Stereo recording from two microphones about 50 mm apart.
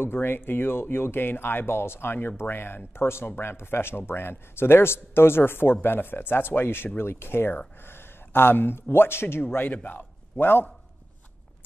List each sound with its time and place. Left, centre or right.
0.0 s a man's voice: left